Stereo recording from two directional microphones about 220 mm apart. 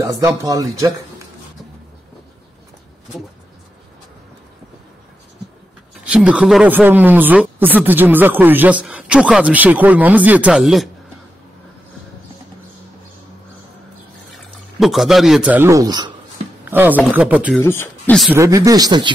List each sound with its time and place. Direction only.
0.0 s speech: 15° right (ahead or behind)
6.0 s speech: 5° right (ahead or behind)
14.8 s a man's voice: centre (ahead or behind)
17.6 s speech: 10° left (ahead or behind)
18.3 s speech: 15° right (ahead or behind)